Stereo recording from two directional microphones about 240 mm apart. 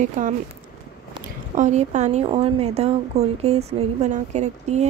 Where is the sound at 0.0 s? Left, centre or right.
Right.